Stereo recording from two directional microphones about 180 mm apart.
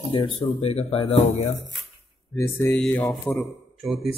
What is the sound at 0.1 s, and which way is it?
Speech, 30° left (ahead or behind).